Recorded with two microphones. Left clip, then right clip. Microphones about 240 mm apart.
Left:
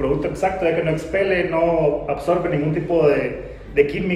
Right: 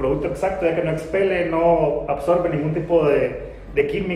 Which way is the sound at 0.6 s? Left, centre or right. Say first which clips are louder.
Left 1 dB; centre.